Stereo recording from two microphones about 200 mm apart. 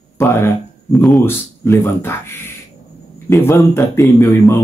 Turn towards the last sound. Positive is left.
turn(degrees=15)  # may be behind; listen again after turning